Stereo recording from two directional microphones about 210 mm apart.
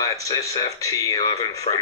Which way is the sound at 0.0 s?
15° left (ahead or behind).